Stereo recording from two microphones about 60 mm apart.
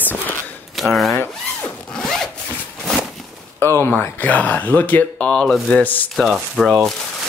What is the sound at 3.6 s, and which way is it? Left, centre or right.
Speech, left.